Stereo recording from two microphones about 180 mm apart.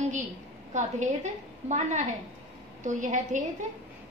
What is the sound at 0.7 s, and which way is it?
A woman's voice, 40° right (ahead or behind).